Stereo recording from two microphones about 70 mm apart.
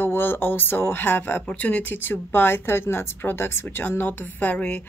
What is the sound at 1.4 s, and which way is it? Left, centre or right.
Speech, centre.